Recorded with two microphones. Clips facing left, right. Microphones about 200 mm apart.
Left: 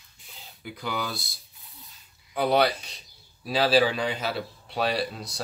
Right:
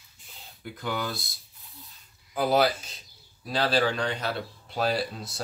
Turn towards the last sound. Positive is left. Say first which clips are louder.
# left 1 dB
turn(degrees=0)  # may be behind; listen again after turning